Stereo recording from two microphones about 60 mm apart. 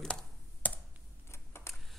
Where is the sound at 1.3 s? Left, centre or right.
Left.